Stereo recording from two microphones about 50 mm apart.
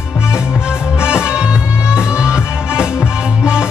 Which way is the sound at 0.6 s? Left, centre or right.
Centre.